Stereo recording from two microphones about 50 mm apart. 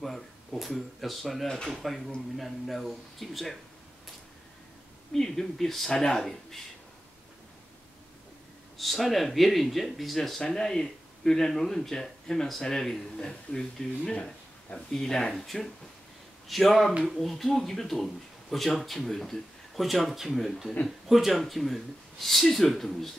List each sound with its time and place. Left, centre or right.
0.0 s speech: centre
5.1 s speech: centre
8.7 s speech: centre
13.2 s speech: centre